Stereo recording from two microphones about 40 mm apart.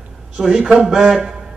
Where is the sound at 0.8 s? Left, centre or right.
Centre.